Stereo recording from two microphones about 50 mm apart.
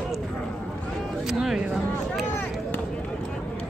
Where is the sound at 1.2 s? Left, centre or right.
Centre.